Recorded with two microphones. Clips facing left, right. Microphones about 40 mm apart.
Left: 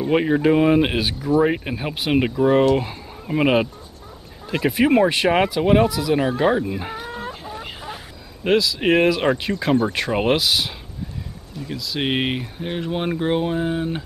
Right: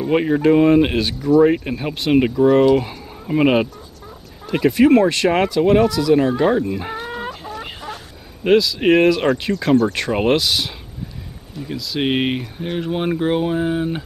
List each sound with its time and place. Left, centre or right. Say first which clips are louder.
0.0 s speech: right 2 dB; centre
8.5 s speech: right 4 dB; centre